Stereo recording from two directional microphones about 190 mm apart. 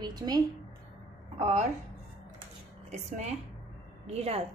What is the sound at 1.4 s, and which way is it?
Speech, 35° right (ahead or behind).